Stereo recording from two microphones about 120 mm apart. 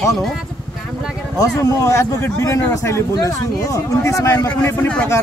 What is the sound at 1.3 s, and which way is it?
Speech, 30° left (ahead or behind).